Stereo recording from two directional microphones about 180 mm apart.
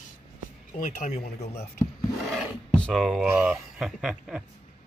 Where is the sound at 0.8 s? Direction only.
50° left (ahead or behind).